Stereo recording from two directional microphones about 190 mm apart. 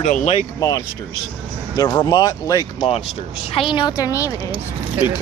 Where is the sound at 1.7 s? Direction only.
20° left (ahead or behind).